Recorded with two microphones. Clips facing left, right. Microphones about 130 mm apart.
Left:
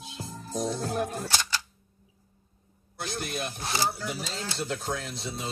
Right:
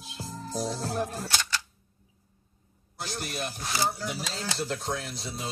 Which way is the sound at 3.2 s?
Centre (ahead or behind).